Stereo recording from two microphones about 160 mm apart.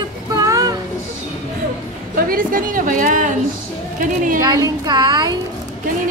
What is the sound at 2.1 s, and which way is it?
Speech, 60° right (ahead or behind).